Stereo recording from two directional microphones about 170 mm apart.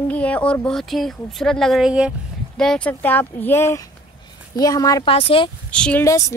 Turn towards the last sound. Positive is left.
turn(degrees=20)  # may be behind; listen again after turning